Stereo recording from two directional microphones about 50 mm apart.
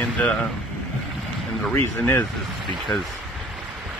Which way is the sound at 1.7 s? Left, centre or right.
Left.